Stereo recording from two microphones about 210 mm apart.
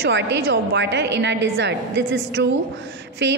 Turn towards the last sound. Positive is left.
turn(degrees=-55)  # may be behind; listen again after turning